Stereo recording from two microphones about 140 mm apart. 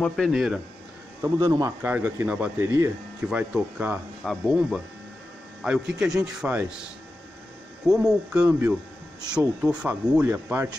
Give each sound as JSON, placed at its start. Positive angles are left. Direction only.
{"t": 0.1, "sound": "a man's voice", "side_deg": 0}
{"t": 1.2, "sound": "a man's voice", "side_deg": -20}
{"t": 1.8, "sound": "a man's voice", "side_deg": -10}
{"t": 7.9, "sound": "speech", "side_deg": -5}